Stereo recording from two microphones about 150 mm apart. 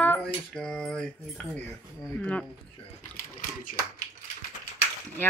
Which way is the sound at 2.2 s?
10° left (ahead or behind).